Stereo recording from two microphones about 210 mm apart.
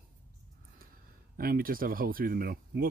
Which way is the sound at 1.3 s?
45° right (ahead or behind).